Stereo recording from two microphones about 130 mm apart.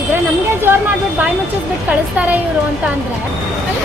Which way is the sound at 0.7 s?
15° right (ahead or behind).